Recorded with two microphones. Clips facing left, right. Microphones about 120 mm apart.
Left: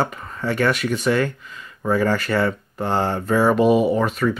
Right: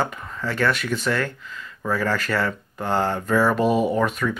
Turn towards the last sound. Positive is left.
turn(degrees=5)  # may be behind; listen again after turning